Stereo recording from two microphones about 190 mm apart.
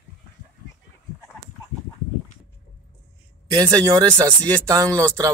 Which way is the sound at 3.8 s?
15° right (ahead or behind).